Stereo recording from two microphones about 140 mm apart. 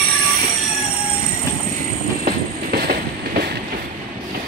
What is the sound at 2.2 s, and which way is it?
Train, 90° right.